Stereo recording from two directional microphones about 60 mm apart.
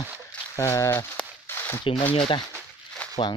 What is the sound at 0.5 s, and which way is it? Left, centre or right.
Speech, left.